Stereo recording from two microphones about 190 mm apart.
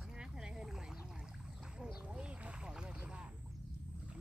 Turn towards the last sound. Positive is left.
turn(degrees=-5)  # may be behind; listen again after turning